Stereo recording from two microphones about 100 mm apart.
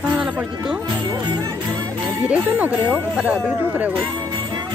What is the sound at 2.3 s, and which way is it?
Speech, 15° right (ahead or behind).